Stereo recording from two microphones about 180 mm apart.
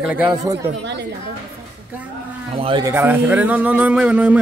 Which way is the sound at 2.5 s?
30° right (ahead or behind).